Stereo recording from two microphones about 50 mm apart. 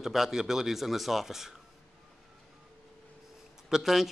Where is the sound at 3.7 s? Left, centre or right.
Centre.